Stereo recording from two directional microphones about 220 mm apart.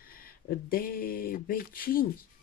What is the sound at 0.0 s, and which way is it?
Speech, 40° left (ahead or behind).